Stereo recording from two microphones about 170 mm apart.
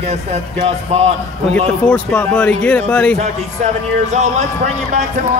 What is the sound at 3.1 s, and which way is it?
Speech, 45° right (ahead or behind).